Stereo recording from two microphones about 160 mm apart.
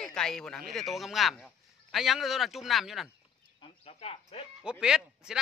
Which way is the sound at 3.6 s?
35° left (ahead or behind).